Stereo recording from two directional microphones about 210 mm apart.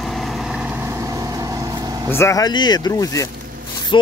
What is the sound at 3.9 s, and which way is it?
Rub, 25° left (ahead or behind).